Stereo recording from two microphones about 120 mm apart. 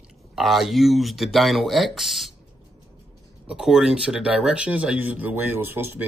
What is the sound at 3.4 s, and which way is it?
Speech, 5° right (ahead or behind).